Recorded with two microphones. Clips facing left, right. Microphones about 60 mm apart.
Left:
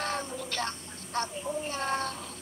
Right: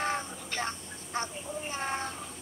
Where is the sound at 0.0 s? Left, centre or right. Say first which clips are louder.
Even; centre.